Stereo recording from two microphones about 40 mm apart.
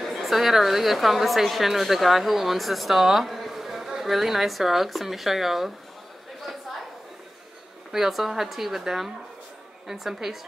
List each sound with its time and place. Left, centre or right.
0.2 s a woman's voice: centre
7.9 s a woman's voice: centre